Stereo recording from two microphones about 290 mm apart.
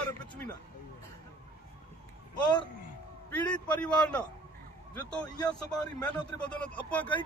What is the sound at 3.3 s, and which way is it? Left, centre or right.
A man's voice, centre.